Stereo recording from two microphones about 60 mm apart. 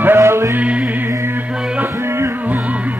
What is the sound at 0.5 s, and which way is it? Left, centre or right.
Music, right.